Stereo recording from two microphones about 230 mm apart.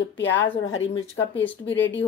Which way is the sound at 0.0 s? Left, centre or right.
Left.